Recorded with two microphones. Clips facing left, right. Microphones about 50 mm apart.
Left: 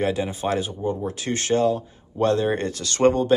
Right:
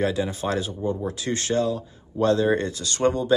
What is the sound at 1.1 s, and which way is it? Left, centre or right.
Speech, left.